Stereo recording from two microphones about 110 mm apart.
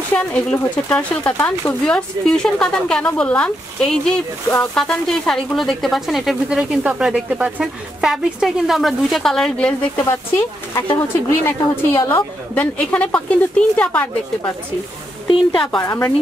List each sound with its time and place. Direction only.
0.1 s speech: 10° left (ahead or behind)
11.0 s speech: 25° left (ahead or behind)
15.2 s a woman's voice: 50° left (ahead or behind)
15.8 s speech: 30° left (ahead or behind)